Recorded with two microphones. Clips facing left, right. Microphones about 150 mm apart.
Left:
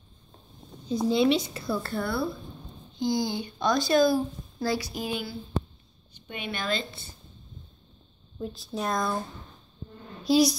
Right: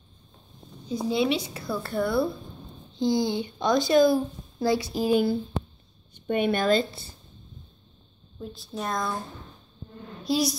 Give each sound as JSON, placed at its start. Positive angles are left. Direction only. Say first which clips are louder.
{"t": 0.8, "sound": "a woman's voice", "louder": "left 2 dB", "side_deg": -10}
{"t": 5.0, "sound": "speech", "louder": "right 10 dB", "side_deg": -45}
{"t": 8.4, "sound": "a woman's voice", "louder": "left 2 dB", "side_deg": 0}
{"t": 10.2, "sound": "a woman's voice", "louder": "left 4 dB", "side_deg": 0}